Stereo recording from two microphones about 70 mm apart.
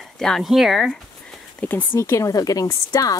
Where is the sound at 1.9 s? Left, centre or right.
Left.